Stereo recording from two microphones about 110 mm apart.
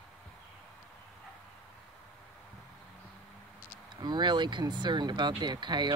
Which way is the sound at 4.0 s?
40° right (ahead or behind).